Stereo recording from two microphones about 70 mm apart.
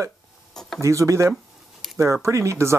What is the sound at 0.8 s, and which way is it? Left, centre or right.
Speech, right.